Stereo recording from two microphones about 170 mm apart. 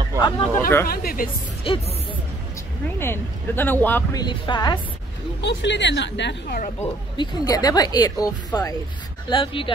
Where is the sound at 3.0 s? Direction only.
15° left (ahead or behind).